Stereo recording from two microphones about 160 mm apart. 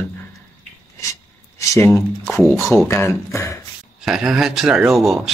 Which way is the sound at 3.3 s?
15° left (ahead or behind).